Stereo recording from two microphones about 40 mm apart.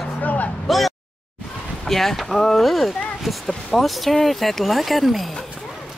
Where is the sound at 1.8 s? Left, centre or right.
Centre.